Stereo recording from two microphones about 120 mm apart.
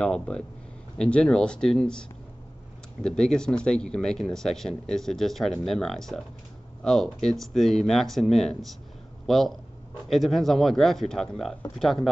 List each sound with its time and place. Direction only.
0.0 s speech: 10° left (ahead or behind)